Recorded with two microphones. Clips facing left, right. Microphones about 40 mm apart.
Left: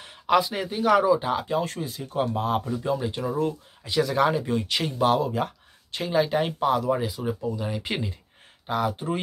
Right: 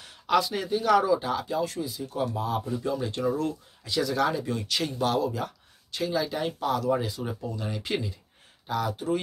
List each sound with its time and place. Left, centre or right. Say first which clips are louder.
0.3 s speech: left 2 dB; left
3.0 s speech: left 1 dB; centre
7.8 s speech: even; left